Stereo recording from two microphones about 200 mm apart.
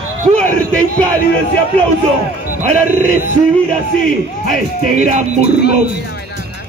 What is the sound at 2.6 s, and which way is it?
Speech, 35° right (ahead or behind).